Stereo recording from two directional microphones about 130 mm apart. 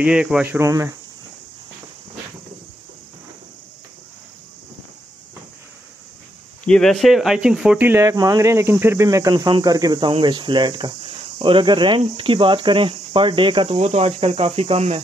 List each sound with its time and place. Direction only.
0.0 s speech: 5° right (ahead or behind); by 0.9 s 25° right (ahead or behind)
6.6 s speech: 5° left (ahead or behind); by 9.3 s 25° right (ahead or behind)
9.3 s speech: 35° right (ahead or behind); by 15.0 s 55° right (ahead or behind)